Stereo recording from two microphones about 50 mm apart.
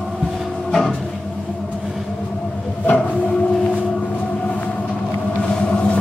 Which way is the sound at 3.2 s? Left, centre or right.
Centre.